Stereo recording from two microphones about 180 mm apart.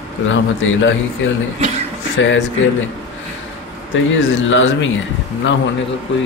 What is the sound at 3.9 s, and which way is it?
Speech, 90° left.